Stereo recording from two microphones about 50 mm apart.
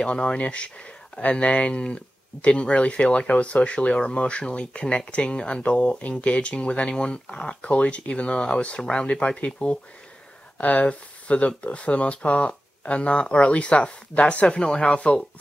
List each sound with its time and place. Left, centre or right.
0.0 s speech: left
10.6 s speech: left